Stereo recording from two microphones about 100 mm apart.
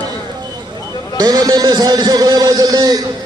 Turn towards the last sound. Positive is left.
turn(degrees=-40)  # may be behind; listen again after turning